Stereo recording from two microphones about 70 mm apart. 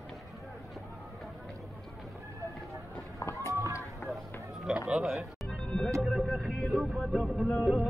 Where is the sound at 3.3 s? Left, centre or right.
Left.